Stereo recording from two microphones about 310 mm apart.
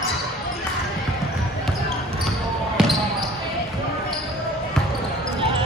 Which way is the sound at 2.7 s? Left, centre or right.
Centre.